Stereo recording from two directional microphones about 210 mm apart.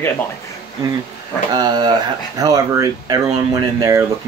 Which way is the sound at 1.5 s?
20° right (ahead or behind).